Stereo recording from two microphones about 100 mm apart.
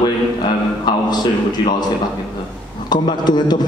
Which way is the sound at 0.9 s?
45° left (ahead or behind).